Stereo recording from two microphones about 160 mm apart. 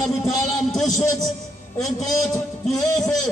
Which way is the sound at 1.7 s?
Centre (ahead or behind).